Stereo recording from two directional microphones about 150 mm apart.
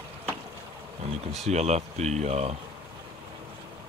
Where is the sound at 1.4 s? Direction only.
45° right (ahead or behind).